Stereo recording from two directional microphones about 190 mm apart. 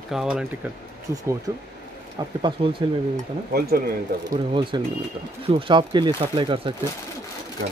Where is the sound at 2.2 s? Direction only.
25° right (ahead or behind).